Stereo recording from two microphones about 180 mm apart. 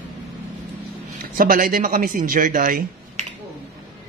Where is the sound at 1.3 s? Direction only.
50° right (ahead or behind).